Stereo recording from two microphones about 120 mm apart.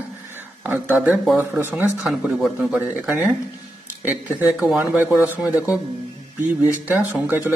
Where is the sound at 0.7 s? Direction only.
15° right (ahead or behind).